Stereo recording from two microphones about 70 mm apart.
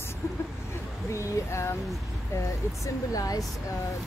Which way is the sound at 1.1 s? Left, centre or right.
Left.